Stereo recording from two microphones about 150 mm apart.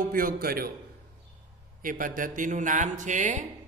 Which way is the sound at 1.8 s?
65° right (ahead or behind).